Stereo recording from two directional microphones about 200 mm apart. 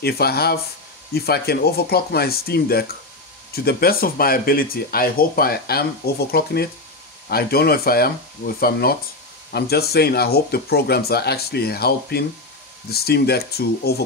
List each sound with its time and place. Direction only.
0.0 s speech: 50° left (ahead or behind)